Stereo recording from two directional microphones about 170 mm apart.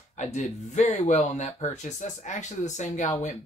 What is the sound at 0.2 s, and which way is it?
Speech, 45° left (ahead or behind).